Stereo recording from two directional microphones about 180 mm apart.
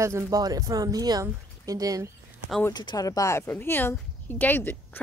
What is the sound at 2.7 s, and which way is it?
Speech, 20° left (ahead or behind).